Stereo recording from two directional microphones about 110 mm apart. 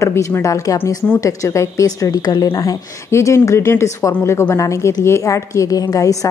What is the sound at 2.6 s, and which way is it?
A woman's voice, 25° left (ahead or behind).